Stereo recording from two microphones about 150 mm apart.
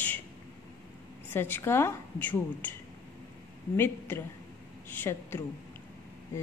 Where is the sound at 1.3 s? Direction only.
15° left (ahead or behind).